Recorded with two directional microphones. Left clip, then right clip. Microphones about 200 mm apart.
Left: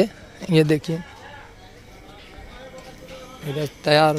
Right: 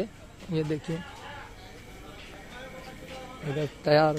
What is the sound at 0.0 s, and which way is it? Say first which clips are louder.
Speech: left 13 dB; 40° left (ahead or behind).